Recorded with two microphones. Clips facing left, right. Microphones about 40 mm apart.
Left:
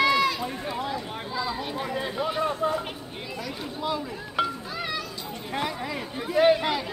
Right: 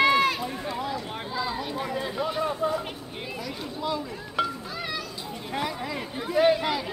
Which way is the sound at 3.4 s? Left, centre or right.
Left.